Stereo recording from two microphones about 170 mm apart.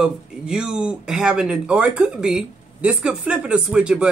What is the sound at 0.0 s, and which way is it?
Speech, 5° right (ahead or behind).